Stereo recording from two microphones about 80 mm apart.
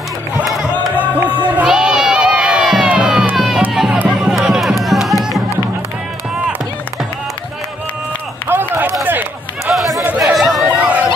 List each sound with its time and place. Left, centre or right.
0.7 s music: left
1.6 s crowd: centre
3.3 s music: centre
8.5 s run: right
9.7 s chatter: centre
10.0 s a sound: right
10.3 s run: centre
10.7 s run: centre